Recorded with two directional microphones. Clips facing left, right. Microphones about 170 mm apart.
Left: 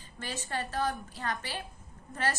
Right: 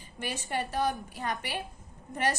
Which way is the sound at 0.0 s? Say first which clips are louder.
Right 3 dB; 15° right (ahead or behind).